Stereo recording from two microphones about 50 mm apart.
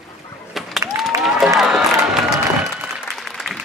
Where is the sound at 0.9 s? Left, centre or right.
Right.